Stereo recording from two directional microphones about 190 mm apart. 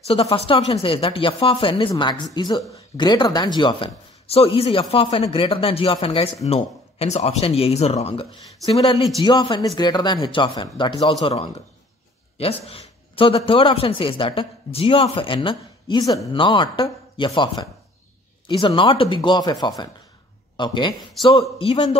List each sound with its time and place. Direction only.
0.0 s a man's voice: 30° left (ahead or behind)
12.4 s a man's voice: 30° left (ahead or behind)